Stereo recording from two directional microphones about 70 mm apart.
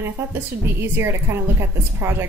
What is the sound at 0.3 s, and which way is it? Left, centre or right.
Speech, right.